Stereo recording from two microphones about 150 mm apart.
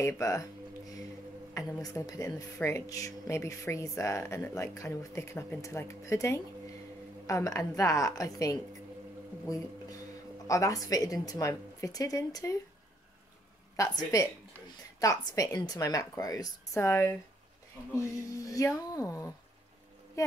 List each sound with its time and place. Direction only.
0.0 s speech: 20° left (ahead or behind)
1.5 s speech: 20° left (ahead or behind)
10.4 s speech: 20° left (ahead or behind)
13.7 s speech: 20° left (ahead or behind)